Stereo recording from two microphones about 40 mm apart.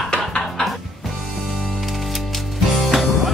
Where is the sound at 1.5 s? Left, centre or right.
Centre.